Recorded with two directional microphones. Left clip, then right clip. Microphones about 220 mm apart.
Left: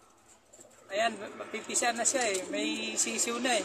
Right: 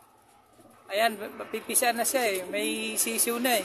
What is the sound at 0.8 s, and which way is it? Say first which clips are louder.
Speech: right 4 dB; 25° right (ahead or behind).